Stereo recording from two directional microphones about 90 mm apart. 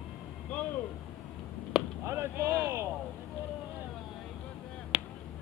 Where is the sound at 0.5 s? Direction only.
15° left (ahead or behind).